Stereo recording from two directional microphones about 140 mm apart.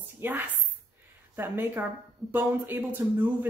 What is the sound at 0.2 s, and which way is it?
A woman's voice, 15° right (ahead or behind).